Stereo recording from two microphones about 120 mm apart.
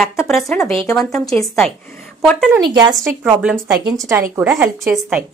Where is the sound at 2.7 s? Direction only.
35° right (ahead or behind).